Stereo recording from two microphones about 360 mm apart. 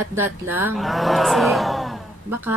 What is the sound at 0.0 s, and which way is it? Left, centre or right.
A woman's voice, centre.